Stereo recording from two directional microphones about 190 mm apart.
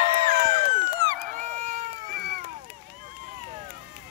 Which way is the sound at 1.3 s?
40° right (ahead or behind).